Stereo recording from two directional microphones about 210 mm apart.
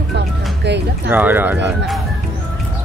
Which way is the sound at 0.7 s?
55° right (ahead or behind).